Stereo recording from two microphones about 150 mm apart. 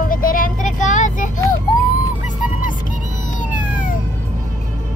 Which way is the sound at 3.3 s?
60° left (ahead or behind).